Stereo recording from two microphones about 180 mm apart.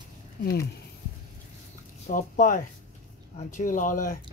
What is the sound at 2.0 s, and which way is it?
Speech, 45° left (ahead or behind).